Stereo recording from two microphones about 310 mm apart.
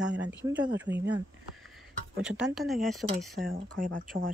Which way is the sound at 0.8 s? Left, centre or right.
Right.